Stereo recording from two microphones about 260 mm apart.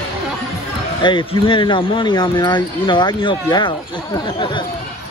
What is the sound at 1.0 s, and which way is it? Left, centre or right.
Speech, centre.